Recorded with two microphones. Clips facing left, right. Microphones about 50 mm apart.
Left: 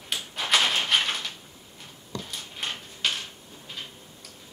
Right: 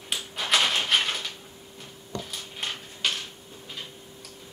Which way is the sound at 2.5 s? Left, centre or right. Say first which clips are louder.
Even; centre.